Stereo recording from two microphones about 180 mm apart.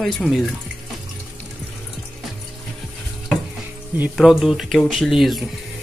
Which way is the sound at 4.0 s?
Centre (ahead or behind).